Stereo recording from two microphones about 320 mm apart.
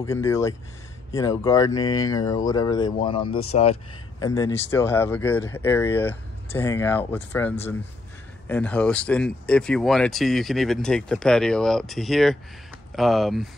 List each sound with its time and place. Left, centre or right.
0.0 s speech: centre